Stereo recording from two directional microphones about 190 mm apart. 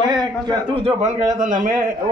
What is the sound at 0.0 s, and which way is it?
A man's voice, 20° right (ahead or behind).